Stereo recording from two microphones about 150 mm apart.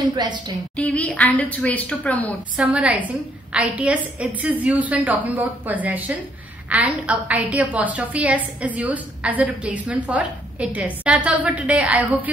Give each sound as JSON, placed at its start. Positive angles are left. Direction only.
{"t": 0.0, "sound": "a woman's voice", "side_deg": -25}
{"t": 0.7, "sound": "a woman's voice", "side_deg": 5}
{"t": 2.5, "sound": "a woman's voice", "side_deg": -5}